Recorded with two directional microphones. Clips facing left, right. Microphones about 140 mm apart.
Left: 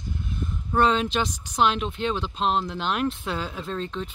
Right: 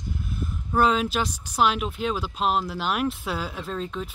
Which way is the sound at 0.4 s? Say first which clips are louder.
Even; 5° right (ahead or behind).